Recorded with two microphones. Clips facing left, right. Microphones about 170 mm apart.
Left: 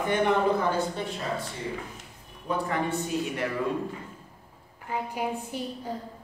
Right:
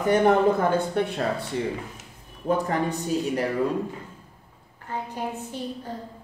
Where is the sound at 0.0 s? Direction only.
40° right (ahead or behind).